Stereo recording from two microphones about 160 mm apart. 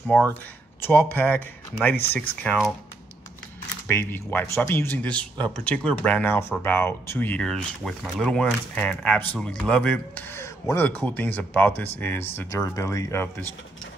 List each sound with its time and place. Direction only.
0.0 s speech: 5° left (ahead or behind)
3.8 s speech: 15° left (ahead or behind)